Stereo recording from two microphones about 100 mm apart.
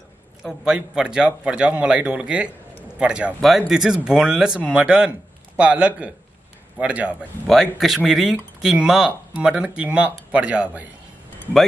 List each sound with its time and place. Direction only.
0.4 s speech: 5° right (ahead or behind)
7.4 s speech: centre (ahead or behind)